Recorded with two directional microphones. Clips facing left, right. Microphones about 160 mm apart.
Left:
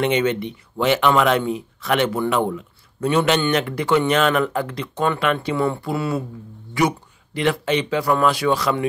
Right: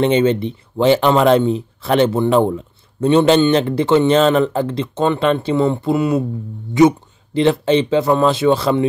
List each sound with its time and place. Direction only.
0.0 s speech: 30° right (ahead or behind)